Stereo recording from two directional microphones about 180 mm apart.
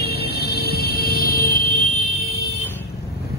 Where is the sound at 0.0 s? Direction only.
60° left (ahead or behind).